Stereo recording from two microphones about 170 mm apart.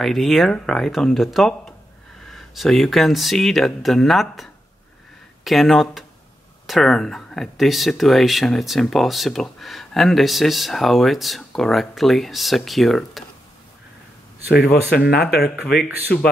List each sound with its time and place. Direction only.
0.0 s speech: centre (ahead or behind)
14.5 s speech: 65° left (ahead or behind)
16.1 s speech: 5° left (ahead or behind)